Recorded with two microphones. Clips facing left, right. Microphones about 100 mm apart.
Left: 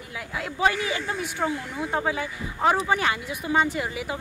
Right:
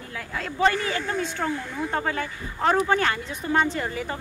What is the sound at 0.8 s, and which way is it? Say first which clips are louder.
Speech: right 2 dB; 15° left (ahead or behind).